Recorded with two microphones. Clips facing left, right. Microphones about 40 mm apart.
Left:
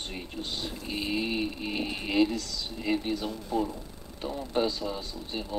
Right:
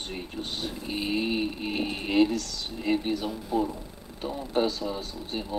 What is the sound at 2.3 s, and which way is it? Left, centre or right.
Speech, right.